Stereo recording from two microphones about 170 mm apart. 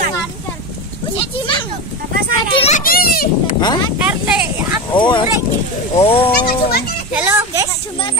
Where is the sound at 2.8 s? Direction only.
60° left (ahead or behind).